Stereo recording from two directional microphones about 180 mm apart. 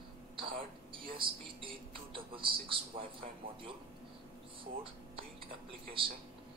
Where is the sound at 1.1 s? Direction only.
30° right (ahead or behind).